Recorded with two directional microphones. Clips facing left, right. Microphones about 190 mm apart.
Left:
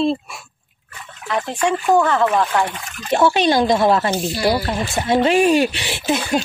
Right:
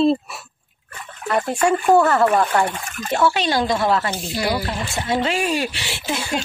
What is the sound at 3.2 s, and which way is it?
Speech, 20° left (ahead or behind).